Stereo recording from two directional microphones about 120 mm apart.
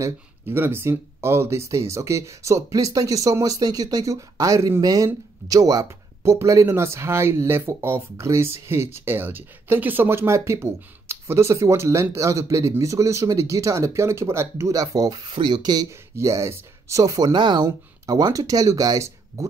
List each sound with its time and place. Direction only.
0.0 s speech: 20° right (ahead or behind)
15.2 s speech: 40° right (ahead or behind)
16.2 s speech: 25° right (ahead or behind)